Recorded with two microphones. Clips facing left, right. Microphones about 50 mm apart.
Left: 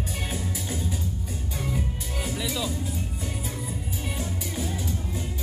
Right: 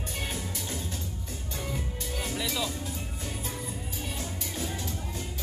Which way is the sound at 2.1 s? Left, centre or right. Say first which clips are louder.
Left 2 dB; centre.